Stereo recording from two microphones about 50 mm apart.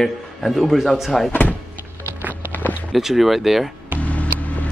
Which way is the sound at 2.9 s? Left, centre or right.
Centre.